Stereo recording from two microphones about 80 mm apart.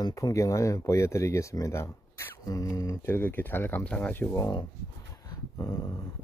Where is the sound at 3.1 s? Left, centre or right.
Left.